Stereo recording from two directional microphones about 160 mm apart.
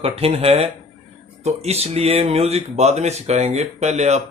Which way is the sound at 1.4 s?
40° right (ahead or behind).